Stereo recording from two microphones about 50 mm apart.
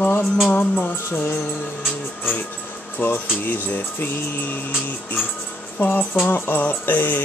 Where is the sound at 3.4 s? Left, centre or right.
Left.